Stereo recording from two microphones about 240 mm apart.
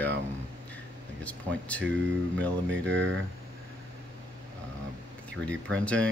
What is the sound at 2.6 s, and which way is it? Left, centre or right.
Speech, right.